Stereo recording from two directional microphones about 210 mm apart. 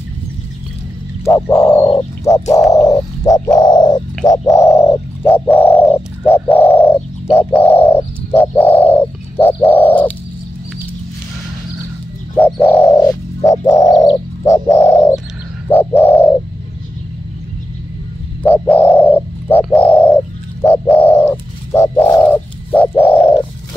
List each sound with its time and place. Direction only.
1.2 s frog: 15° left (ahead or behind)
2.7 s bird: 15° left (ahead or behind)
12.4 s bird: 10° left (ahead or behind)
18.4 s a sound: 10° left (ahead or behind)
19.7 s bird: 10° left (ahead or behind)